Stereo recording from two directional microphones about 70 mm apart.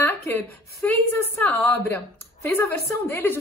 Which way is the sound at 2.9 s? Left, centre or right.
Left.